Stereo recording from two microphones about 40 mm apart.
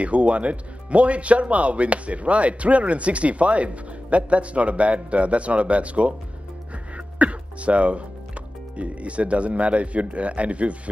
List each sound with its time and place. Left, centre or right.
0.0 s speech: right
7.2 s speech: right